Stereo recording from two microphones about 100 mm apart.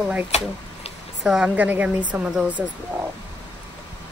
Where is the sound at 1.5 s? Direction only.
15° right (ahead or behind).